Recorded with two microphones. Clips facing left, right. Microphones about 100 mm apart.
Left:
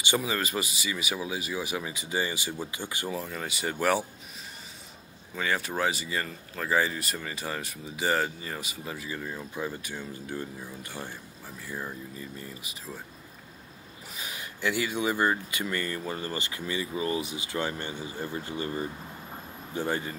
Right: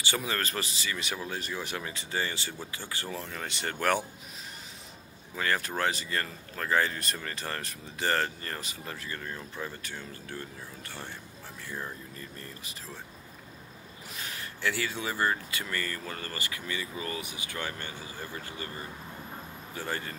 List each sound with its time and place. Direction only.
0.2 s speech: 5° left (ahead or behind)
5.3 s speech: centre (ahead or behind)
14.1 s speech: 10° left (ahead or behind)